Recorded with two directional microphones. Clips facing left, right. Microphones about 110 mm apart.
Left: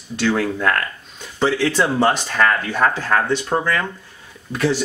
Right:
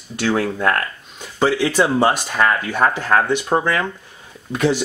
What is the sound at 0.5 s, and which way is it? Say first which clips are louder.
Speech: right 1 dB; 30° right (ahead or behind).